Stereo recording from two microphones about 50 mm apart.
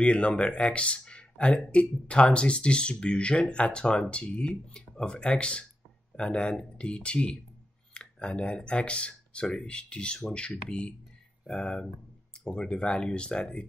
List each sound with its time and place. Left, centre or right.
0.0 s speech: left